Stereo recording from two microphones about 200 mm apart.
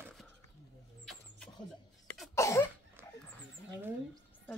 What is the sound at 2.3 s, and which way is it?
Cough, 15° left (ahead or behind).